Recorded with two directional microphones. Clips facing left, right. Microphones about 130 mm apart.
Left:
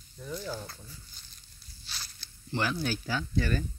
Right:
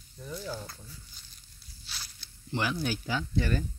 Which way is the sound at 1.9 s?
10° right (ahead or behind).